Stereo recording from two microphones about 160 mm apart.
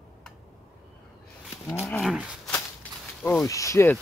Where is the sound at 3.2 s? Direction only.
10° left (ahead or behind).